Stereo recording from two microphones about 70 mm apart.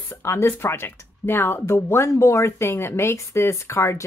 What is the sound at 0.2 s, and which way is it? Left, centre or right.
Speech, left.